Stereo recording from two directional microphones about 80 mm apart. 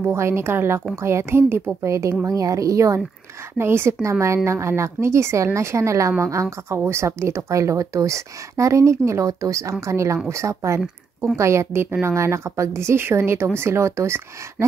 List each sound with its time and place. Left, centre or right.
0.0 s a woman's voice: right
3.5 s speech: right